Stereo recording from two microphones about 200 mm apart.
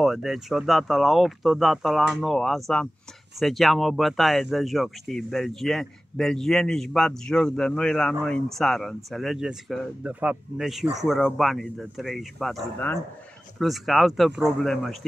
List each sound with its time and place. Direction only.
0.0 s speech: centre (ahead or behind)